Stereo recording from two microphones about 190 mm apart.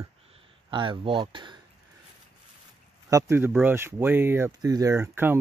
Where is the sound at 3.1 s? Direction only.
10° right (ahead or behind).